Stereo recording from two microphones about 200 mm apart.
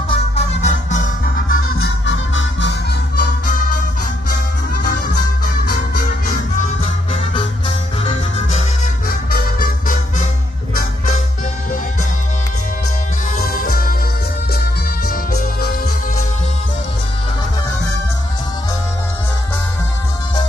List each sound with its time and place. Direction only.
0.1 s music: 35° left (ahead or behind)
1.8 s music: 70° left (ahead or behind)
3.2 s music: 45° left (ahead or behind)
5.4 s music: 45° left (ahead or behind)
6.8 s music: 30° left (ahead or behind)
9.0 s music: 50° left (ahead or behind)
13.4 s music: 45° left (ahead or behind)